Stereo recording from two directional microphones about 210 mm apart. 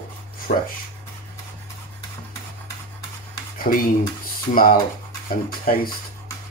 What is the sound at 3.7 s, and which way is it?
Speech, 40° left (ahead or behind).